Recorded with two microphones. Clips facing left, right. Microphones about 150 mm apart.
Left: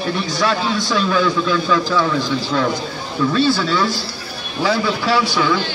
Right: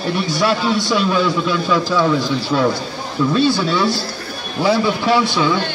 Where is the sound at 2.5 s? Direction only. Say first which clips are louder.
Right 4 dB; 30° right (ahead or behind).